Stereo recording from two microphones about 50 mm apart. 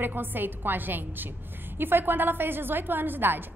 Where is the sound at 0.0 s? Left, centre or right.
Right.